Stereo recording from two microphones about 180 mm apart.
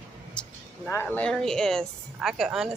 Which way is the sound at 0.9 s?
10° left (ahead or behind).